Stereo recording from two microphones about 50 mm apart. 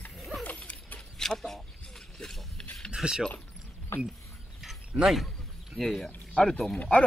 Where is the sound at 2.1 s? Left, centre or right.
Centre.